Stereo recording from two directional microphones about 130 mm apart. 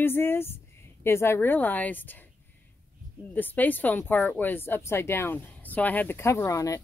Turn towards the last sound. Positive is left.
turn(degrees=25)  # may be behind; listen again after turning